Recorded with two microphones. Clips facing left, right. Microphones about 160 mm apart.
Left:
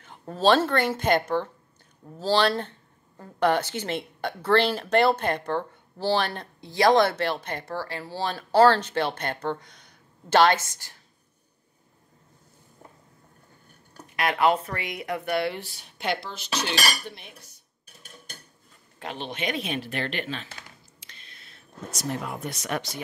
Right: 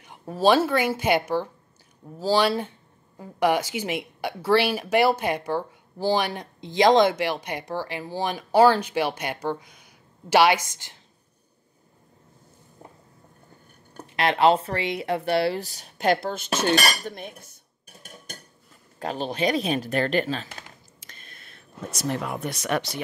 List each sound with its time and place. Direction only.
0.0 s a woman's voice: 10° right (ahead or behind)
14.0 s speech: 30° right (ahead or behind); by 17.6 s 50° right (ahead or behind)
18.9 s a sound: 40° right (ahead or behind)
22.2 s speech: 75° right (ahead or behind)